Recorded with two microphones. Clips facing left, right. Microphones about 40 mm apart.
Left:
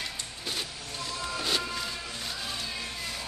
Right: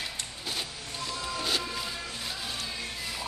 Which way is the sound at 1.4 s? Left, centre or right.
Centre.